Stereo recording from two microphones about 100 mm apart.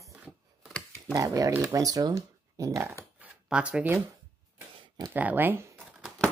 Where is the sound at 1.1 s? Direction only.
35° right (ahead or behind).